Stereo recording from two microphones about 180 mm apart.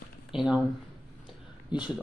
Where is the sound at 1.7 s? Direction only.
25° left (ahead or behind).